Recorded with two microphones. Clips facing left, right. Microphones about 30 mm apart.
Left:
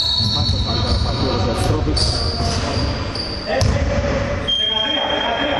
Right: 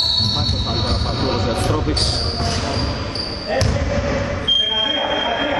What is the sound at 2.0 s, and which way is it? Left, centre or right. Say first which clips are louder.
Speech: even; right.